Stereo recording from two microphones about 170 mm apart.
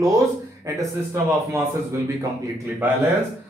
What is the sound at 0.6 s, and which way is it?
Speech, 15° right (ahead or behind).